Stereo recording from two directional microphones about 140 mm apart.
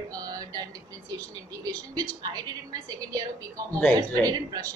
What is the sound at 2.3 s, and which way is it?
Speech, 25° right (ahead or behind).